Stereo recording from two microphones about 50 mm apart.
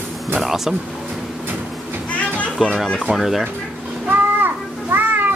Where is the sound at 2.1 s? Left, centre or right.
Left.